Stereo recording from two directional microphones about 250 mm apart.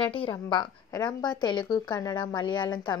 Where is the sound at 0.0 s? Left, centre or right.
Centre.